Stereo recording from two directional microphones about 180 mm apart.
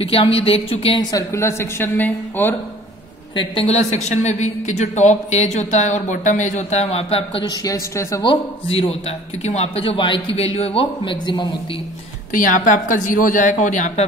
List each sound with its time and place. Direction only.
0.0 s a woman's voice: 30° left (ahead or behind)
1.1 s speech: 15° left (ahead or behind)
3.3 s a woman's voice: 35° left (ahead or behind); by 8.2 s 15° left (ahead or behind)
8.2 s a woman's voice: 30° left (ahead or behind)
12.3 s a woman's voice: 50° left (ahead or behind)